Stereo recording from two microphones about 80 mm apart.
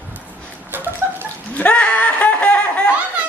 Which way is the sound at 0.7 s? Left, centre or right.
Right.